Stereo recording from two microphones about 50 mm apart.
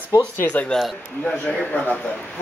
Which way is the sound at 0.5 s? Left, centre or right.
Left.